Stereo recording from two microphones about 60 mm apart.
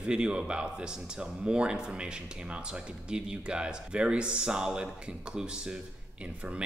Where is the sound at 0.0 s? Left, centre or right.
Centre.